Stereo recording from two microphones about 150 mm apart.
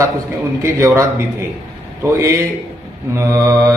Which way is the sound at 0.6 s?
20° right (ahead or behind).